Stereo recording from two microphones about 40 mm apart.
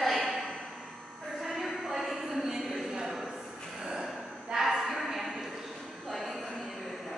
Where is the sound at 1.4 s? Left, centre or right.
Centre.